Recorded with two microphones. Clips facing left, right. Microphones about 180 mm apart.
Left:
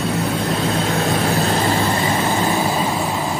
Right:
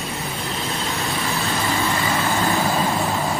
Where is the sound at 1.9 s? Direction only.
30° left (ahead or behind).